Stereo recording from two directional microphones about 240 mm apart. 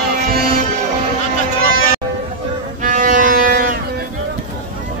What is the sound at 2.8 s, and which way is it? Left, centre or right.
Music, right.